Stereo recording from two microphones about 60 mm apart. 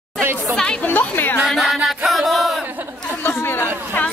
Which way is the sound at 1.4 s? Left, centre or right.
Centre.